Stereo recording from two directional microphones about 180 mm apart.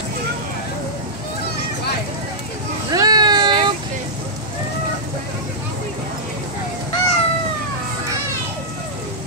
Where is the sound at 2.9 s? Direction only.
20° right (ahead or behind).